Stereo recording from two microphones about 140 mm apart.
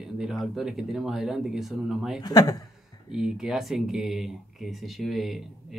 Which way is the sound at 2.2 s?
25° left (ahead or behind).